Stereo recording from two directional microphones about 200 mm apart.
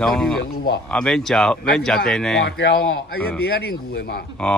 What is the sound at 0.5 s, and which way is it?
Speech, 50° left (ahead or behind).